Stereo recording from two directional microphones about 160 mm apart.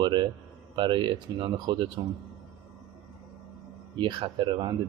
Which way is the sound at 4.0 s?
30° right (ahead or behind).